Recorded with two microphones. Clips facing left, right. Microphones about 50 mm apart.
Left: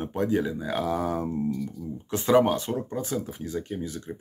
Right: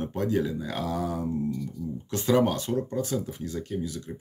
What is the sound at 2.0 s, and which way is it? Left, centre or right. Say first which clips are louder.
Speech: left 3 dB; centre.